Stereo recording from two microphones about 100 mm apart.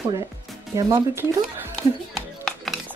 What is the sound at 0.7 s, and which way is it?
Speech, 35° right (ahead or behind).